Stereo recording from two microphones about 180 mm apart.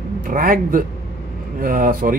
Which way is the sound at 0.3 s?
50° right (ahead or behind).